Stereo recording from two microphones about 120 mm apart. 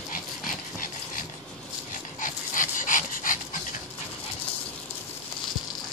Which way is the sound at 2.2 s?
90° left.